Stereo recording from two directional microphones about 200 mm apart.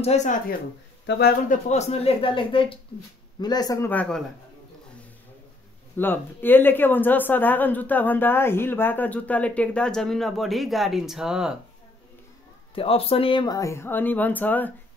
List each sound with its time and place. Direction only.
0.0 s speech: 35° left (ahead or behind)
1.0 s speech: 60° left (ahead or behind)
1.5 s a woman's voice: 35° left (ahead or behind); by 4.2 s 5° left (ahead or behind)
5.9 s a woman's voice: 10° left (ahead or behind)
12.7 s a woman's voice: 30° left (ahead or behind); by 14.7 s 10° left (ahead or behind)